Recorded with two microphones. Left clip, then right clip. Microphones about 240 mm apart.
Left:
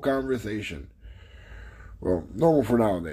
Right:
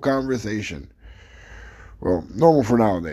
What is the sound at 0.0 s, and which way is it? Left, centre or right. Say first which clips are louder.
Speech: right 4 dB; right.